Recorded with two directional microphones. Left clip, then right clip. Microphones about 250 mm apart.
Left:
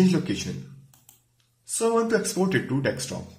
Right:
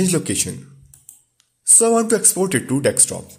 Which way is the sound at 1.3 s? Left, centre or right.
Right.